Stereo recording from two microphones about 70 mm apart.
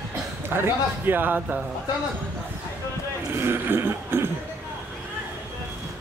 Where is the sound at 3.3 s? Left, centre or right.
Right.